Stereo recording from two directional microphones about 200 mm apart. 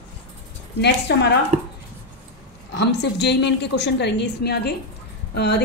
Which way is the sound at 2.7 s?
60° left (ahead or behind).